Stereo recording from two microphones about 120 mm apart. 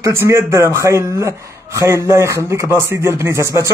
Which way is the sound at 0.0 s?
20° right (ahead or behind).